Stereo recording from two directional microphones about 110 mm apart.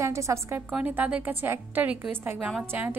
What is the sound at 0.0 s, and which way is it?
A woman's voice, 25° right (ahead or behind).